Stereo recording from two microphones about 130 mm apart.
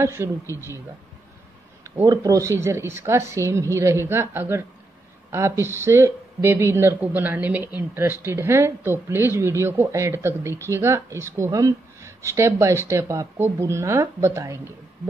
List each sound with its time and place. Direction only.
0.0 s speech: 20° right (ahead or behind)
2.0 s speech: 25° right (ahead or behind)